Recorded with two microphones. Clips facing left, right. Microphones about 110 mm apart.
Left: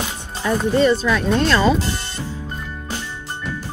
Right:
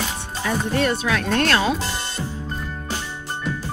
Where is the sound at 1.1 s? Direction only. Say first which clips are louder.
Left 3 dB; 65° right (ahead or behind).